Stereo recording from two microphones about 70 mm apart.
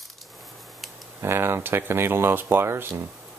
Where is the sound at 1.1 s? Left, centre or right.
Right.